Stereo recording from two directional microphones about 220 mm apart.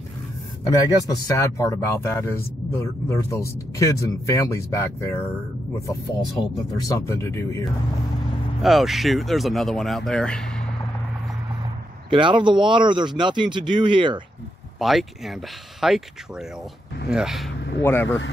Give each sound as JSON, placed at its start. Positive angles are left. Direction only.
{"t": 0.7, "sound": "speech", "side_deg": 15}
{"t": 6.9, "sound": "speech", "side_deg": 15}
{"t": 8.6, "sound": "speech", "side_deg": 0}
{"t": 12.1, "sound": "speech", "side_deg": -20}
{"t": 14.8, "sound": "speech", "side_deg": 0}
{"t": 17.6, "sound": "speech", "side_deg": 50}